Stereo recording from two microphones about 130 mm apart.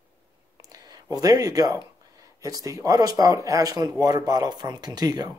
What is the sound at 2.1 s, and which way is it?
Speech, 25° right (ahead or behind).